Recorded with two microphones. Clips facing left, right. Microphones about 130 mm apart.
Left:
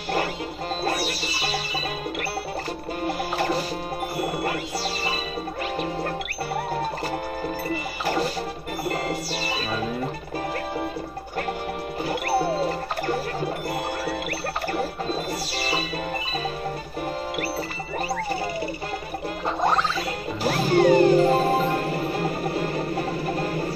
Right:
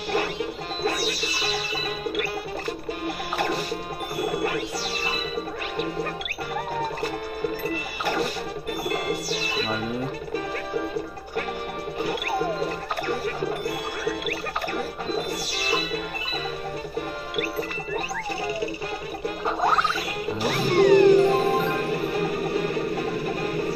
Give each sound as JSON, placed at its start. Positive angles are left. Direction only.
{"t": 0.8, "sound": "music", "side_deg": 35}
{"t": 3.1, "sound": "music", "side_deg": 35}
{"t": 4.2, "sound": "wind chime", "side_deg": 30}
{"t": 7.7, "sound": "music", "side_deg": 35}
{"t": 12.0, "sound": "music", "side_deg": 35}
{"t": 20.4, "sound": "music", "side_deg": 35}